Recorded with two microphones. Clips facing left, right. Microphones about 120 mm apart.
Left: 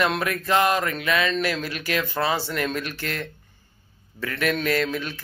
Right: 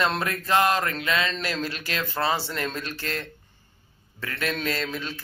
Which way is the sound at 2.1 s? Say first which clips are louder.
Even; 15° left (ahead or behind).